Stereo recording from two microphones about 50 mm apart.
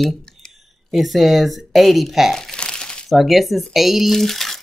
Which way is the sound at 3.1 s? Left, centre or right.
Centre.